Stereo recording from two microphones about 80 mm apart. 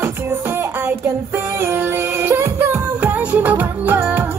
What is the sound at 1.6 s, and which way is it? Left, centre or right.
Music, right.